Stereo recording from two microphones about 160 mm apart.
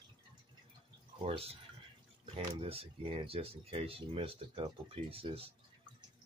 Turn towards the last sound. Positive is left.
turn(degrees=-35)  # may be behind; listen again after turning